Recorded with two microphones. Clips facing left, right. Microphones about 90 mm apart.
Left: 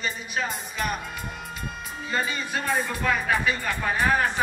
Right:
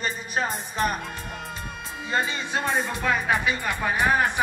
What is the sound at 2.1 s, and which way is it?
Speech, 25° right (ahead or behind).